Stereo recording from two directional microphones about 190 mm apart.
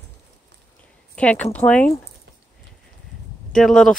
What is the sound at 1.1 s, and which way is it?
Speech, 5° left (ahead or behind).